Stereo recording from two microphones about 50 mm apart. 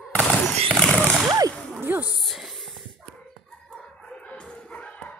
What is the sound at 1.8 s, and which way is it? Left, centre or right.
Speech, right.